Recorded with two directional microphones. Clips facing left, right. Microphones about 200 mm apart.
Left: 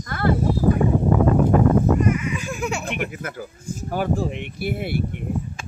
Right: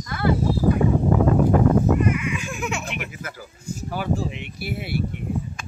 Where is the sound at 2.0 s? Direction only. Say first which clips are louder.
Left 1 dB; 40° left (ahead or behind).